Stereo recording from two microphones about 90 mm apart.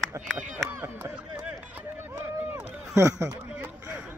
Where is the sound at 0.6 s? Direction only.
35° right (ahead or behind).